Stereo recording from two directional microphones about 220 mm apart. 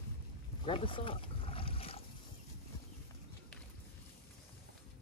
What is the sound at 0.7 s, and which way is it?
Boat, 25° left (ahead or behind).